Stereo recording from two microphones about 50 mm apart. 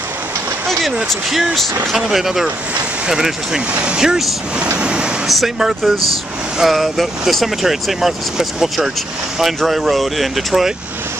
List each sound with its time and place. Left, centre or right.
1.3 s speech: centre
5.3 s speech: centre